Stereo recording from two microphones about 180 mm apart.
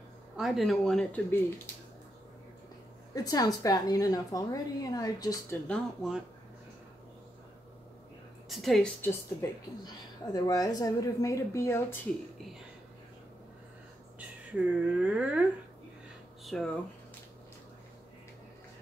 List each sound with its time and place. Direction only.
0.4 s speech: centre (ahead or behind)
3.3 s a woman's voice: 20° left (ahead or behind)
5.7 s speech: centre (ahead or behind)
8.5 s speech: centre (ahead or behind)
9.8 s a woman's voice: 20° left (ahead or behind)
14.5 s speech: 5° right (ahead or behind)
16.4 s speech: centre (ahead or behind)